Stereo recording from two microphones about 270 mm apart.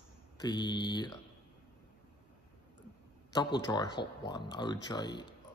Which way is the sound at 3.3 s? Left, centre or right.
Centre.